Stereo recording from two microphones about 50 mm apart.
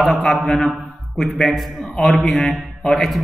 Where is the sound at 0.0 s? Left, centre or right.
Centre.